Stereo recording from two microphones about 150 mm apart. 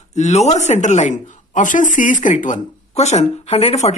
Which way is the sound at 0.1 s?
50° left (ahead or behind).